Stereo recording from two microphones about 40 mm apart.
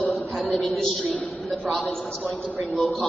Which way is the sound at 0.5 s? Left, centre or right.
Left.